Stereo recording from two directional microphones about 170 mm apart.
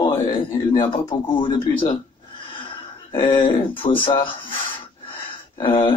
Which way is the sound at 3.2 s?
30° left (ahead or behind).